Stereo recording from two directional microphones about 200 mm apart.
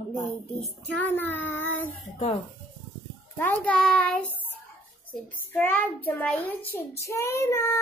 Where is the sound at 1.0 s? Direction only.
10° left (ahead or behind).